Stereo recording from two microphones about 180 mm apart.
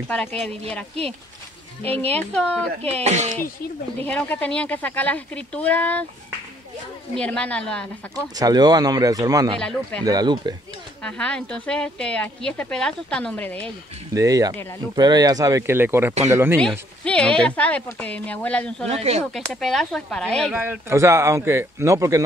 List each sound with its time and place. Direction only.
0.1 s speech: 5° left (ahead or behind)
2.0 s speech: 10° left (ahead or behind)
2.9 s speech: 35° right (ahead or behind)
4.0 s speech: 10° left (ahead or behind)
7.2 s speech: 5° left (ahead or behind)
8.4 s speech: 20° right (ahead or behind)
9.6 s speech: 5° left (ahead or behind)
10.0 s speech: 25° right (ahead or behind)
11.0 s speech: 5° left (ahead or behind)
14.1 s a man's voice: 20° right (ahead or behind)
17.0 s speech: 5° left (ahead or behind)
18.9 s speech: 35° right (ahead or behind)
19.3 s speech: centre (ahead or behind)
20.5 s a man's voice: 10° right (ahead or behind)